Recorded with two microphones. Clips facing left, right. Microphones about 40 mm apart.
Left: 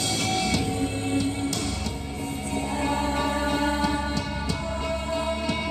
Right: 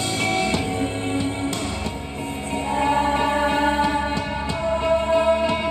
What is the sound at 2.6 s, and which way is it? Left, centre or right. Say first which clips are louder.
Music: right 7 dB; right.